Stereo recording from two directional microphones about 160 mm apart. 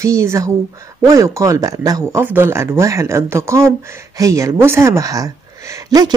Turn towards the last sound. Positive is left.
turn(degrees=-20)  # may be behind; listen again after turning